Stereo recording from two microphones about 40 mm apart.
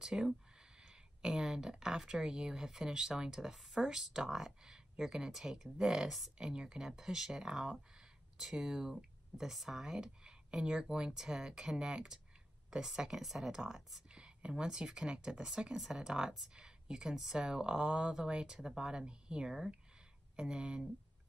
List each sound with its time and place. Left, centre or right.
0.0 s speech: centre
14.1 s speech: right